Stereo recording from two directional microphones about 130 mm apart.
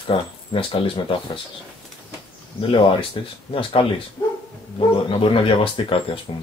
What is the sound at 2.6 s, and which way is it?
Speech, 40° left (ahead or behind).